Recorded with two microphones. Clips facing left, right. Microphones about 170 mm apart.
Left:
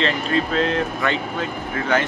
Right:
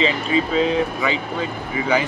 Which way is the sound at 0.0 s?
5° right (ahead or behind).